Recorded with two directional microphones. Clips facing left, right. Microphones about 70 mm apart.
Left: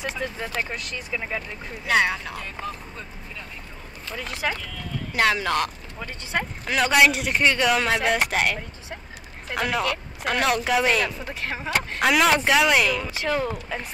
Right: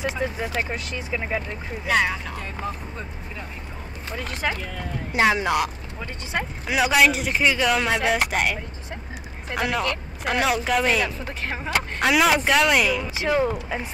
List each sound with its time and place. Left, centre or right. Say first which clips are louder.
0.0 s speech: right 3 dB; centre
1.9 s speech: left 1 dB; centre
4.6 s speech: right 2 dB; right
5.1 s speech: right 2 dB; centre
13.1 s speech: right 3 dB; centre